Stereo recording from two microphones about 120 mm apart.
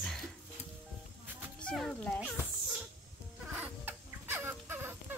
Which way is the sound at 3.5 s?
15° right (ahead or behind).